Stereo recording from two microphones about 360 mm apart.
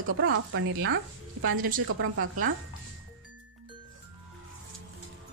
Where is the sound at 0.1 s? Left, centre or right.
Right.